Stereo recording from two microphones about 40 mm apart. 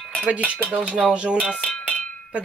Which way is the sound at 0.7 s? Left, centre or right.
Right.